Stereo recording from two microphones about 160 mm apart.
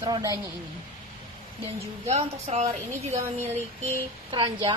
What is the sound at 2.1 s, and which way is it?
Speech, 40° right (ahead or behind).